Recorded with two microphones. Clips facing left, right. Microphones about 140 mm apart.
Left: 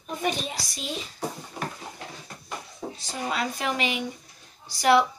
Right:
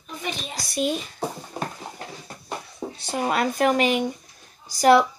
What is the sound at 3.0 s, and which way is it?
Speech, 60° right (ahead or behind).